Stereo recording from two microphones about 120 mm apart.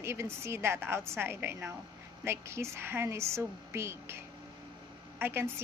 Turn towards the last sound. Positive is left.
turn(degrees=-20)  # may be behind; listen again after turning